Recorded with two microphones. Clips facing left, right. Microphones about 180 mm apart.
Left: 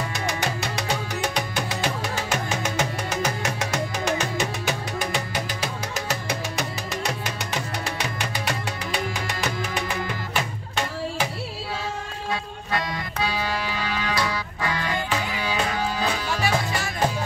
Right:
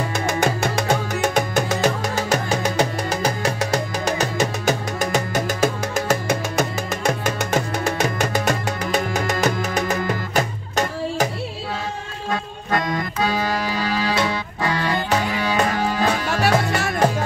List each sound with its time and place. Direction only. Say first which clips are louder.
0.3 s music: right 9 dB; 50° right (ahead or behind)
12.3 s music: right 5 dB; 50° right (ahead or behind)
14.1 s music: right 4 dB; 25° right (ahead or behind)
15.0 s music: right 6 dB; 50° right (ahead or behind)